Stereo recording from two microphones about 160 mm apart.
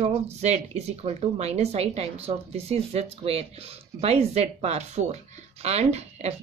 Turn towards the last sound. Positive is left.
turn(degrees=-40)  # may be behind; listen again after turning